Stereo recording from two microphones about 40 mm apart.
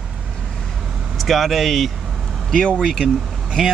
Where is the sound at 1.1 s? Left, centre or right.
Centre.